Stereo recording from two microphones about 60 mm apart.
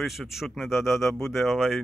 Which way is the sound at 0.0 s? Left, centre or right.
Centre.